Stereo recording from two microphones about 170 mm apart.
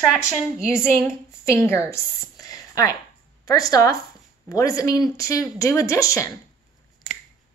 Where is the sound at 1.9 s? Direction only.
20° left (ahead or behind).